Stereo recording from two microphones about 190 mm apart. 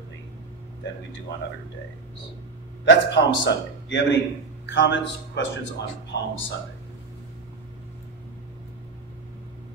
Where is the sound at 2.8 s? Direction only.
65° left (ahead or behind).